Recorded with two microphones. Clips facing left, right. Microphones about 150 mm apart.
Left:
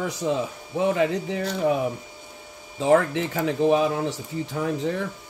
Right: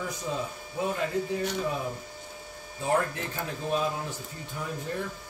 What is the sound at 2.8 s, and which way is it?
Speech, 90° left.